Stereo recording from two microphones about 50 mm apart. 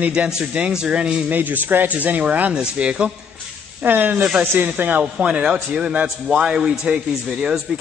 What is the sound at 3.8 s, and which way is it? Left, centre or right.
A man's voice, right.